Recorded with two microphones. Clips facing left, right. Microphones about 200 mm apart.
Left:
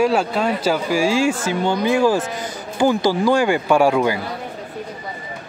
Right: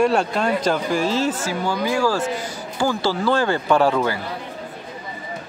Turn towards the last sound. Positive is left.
turn(degrees=15)  # may be behind; listen again after turning